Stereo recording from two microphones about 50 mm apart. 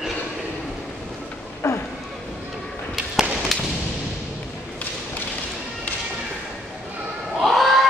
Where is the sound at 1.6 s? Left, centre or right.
Left.